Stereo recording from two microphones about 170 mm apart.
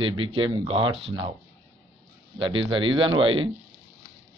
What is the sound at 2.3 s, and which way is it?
Speech, 30° right (ahead or behind).